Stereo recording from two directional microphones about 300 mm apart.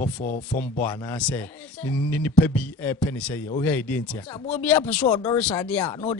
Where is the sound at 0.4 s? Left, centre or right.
Centre.